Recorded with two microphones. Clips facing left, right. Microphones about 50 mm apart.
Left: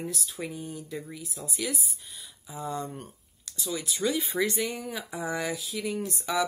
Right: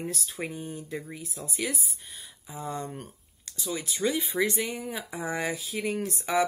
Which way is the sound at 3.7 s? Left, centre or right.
Right.